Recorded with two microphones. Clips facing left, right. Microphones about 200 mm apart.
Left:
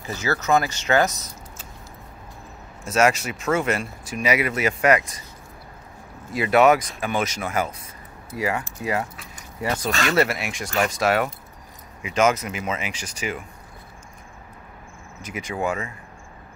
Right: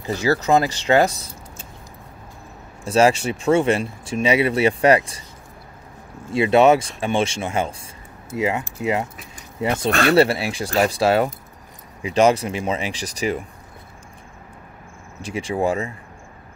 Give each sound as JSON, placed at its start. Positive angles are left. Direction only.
{"t": 0.0, "sound": "speech", "side_deg": -35}
{"t": 2.8, "sound": "speech", "side_deg": -30}
{"t": 6.3, "sound": "speech", "side_deg": -25}
{"t": 15.2, "sound": "speech", "side_deg": -30}